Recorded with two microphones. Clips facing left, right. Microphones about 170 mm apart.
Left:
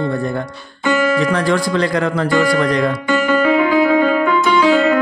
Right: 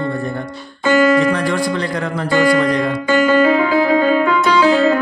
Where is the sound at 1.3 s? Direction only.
90° left.